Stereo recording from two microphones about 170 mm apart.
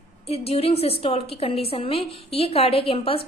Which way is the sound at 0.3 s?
35° left (ahead or behind).